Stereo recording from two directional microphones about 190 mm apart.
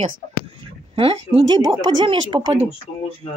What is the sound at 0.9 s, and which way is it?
Speech, 30° right (ahead or behind).